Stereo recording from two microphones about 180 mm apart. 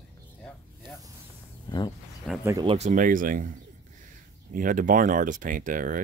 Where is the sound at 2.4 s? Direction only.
15° right (ahead or behind).